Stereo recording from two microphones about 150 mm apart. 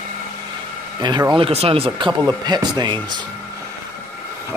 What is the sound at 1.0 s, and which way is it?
Speech, 30° right (ahead or behind).